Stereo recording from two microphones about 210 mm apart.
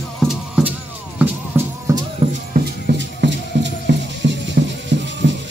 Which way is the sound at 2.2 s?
25° right (ahead or behind).